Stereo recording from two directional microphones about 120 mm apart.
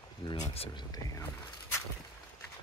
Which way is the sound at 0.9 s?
30° left (ahead or behind).